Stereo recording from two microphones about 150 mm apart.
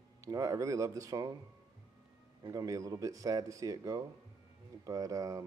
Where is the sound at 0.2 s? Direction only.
25° right (ahead or behind).